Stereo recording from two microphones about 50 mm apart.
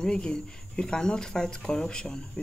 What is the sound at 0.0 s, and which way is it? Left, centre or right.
Speech, centre.